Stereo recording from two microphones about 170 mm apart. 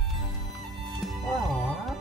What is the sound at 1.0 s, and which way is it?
Music, centre (ahead or behind).